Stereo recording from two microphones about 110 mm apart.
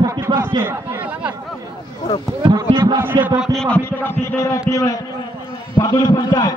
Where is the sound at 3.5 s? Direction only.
10° left (ahead or behind); by 6.5 s 40° left (ahead or behind).